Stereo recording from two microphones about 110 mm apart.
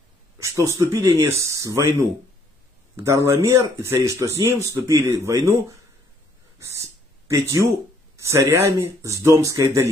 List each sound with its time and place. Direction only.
0.4 s speech: 30° right (ahead or behind)